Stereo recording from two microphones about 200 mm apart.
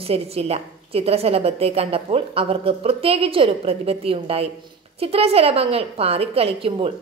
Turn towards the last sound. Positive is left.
turn(degrees=-25)  # may be behind; listen again after turning